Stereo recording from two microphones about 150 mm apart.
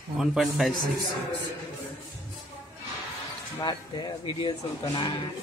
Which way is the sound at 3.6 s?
30° left (ahead or behind).